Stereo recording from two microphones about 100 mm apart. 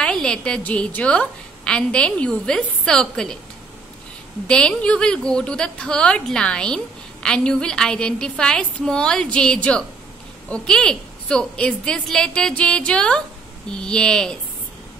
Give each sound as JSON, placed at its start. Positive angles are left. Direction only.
{"t": 0.0, "sound": "a woman's voice", "side_deg": 10}
{"t": 4.5, "sound": "a woman's voice", "side_deg": 10}